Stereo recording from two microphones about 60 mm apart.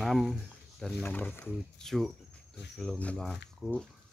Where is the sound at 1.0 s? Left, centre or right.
Left.